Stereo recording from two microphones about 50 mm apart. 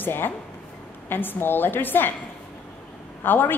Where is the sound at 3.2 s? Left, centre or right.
Left.